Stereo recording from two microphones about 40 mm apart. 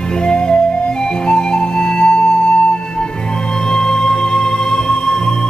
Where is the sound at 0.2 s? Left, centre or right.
Centre.